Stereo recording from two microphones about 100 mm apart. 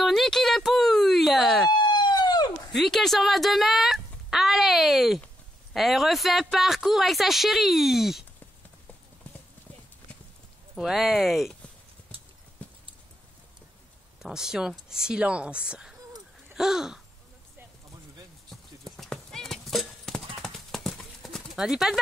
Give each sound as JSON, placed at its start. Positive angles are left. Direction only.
{"t": 0.0, "sound": "a sound", "side_deg": 0}
{"t": 1.7, "sound": "a sound", "side_deg": 50}
{"t": 2.7, "sound": "speech", "side_deg": 0}
{"t": 10.8, "sound": "speech", "side_deg": 0}
{"t": 14.2, "sound": "speech", "side_deg": -5}
{"t": 18.5, "sound": "clip-clop", "side_deg": 5}